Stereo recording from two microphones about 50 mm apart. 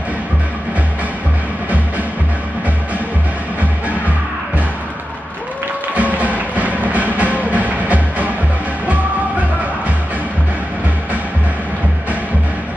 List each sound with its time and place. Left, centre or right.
5.9 s music: right